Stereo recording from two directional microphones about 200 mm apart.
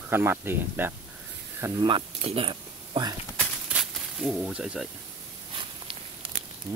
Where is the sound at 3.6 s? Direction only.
Centre (ahead or behind).